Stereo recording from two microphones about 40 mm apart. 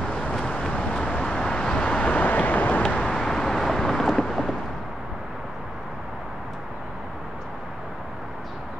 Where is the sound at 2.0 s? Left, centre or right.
Left.